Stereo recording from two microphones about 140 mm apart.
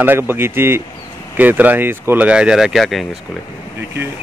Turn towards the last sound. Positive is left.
turn(degrees=0)  # may be behind; listen again after turning